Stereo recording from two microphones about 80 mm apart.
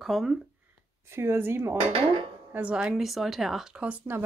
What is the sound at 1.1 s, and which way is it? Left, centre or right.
Speech, right.